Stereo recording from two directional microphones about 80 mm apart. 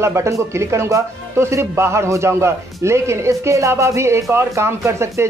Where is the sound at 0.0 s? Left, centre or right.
Right.